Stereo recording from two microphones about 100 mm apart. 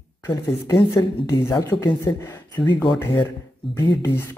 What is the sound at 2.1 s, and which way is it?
Speech, 25° left (ahead or behind).